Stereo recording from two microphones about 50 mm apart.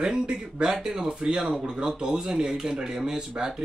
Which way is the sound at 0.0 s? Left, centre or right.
Centre.